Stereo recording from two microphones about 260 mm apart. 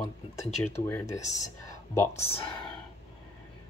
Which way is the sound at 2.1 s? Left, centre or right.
Left.